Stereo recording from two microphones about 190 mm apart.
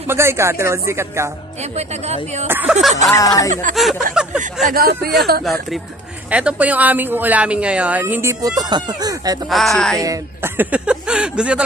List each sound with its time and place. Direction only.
0.0 s speech: 15° right (ahead or behind)
1.6 s speech: 35° right (ahead or behind)
2.4 s speech: 10° right (ahead or behind)
3.1 s speech: 20° left (ahead or behind)
4.1 s speech: 5° right (ahead or behind)
4.6 s speech: 55° right (ahead or behind)
5.4 s speech: centre (ahead or behind); by 9.4 s 20° right (ahead or behind)
9.5 s speech: centre (ahead or behind)
9.9 s speech: 15° right (ahead or behind)